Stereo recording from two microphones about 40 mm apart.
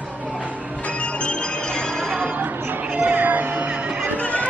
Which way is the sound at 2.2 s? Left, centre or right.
Right.